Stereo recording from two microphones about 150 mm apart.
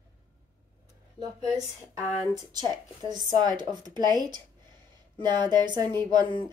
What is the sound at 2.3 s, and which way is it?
Speech, 25° right (ahead or behind).